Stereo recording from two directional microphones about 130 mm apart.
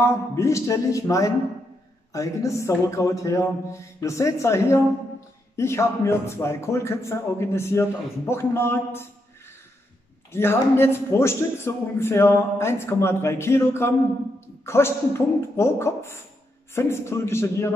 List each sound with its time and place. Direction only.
0.0 s a man's voice: 20° left (ahead or behind)
10.3 s a man's voice: 20° left (ahead or behind)